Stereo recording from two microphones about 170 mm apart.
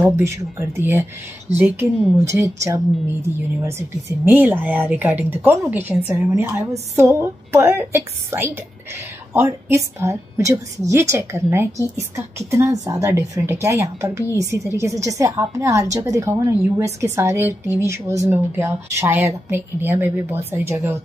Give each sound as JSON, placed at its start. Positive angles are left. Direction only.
{"t": 0.0, "sound": "a woman's voice", "side_deg": -15}